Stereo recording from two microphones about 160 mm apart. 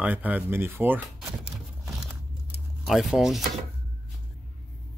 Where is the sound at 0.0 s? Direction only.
10° right (ahead or behind).